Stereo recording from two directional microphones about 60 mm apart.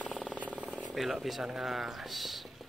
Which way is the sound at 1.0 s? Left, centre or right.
Centre.